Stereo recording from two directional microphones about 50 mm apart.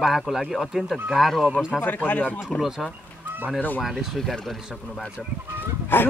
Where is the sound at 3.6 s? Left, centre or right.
Left.